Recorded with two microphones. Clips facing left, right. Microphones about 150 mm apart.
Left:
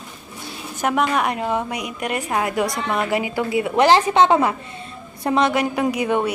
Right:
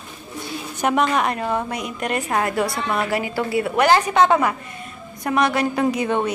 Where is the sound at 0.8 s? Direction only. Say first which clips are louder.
Right 1 dB; 5° left (ahead or behind).